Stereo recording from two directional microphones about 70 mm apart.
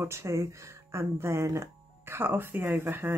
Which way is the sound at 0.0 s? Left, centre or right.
Right.